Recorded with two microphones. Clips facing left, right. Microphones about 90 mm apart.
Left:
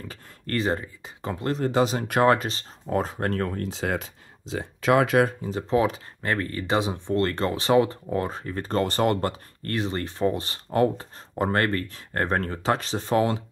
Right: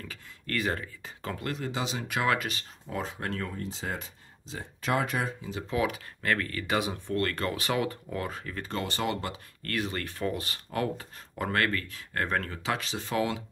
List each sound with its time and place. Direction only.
0.1 s speech: 30° left (ahead or behind)
1.6 s speech: 50° left (ahead or behind)
2.3 s speech: 30° left (ahead or behind)
2.9 s speech: 45° left (ahead or behind)
3.6 s speech: 75° left (ahead or behind)
5.4 s speech: 35° left (ahead or behind)
9.6 s speech: 25° left (ahead or behind)